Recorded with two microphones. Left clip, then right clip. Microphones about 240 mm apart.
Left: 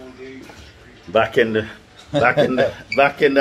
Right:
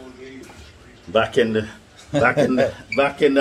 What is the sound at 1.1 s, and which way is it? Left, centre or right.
Speech, centre.